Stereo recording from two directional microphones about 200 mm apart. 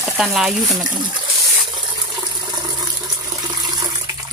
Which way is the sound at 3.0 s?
20° right (ahead or behind).